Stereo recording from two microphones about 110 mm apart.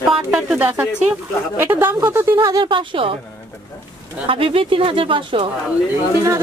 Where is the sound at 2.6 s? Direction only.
50° right (ahead or behind).